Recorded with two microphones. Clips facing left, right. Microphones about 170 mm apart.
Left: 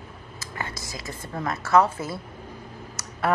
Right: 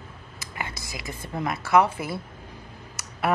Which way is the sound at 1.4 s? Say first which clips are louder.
Even; 15° right (ahead or behind).